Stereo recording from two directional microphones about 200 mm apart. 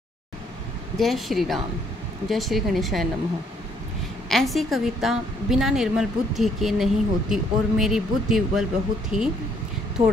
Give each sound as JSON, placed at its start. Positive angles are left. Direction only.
{"t": 0.9, "sound": "a woman's voice", "side_deg": 0}
{"t": 4.3, "sound": "a woman's voice", "side_deg": 0}
{"t": 10.0, "sound": "speech", "side_deg": -30}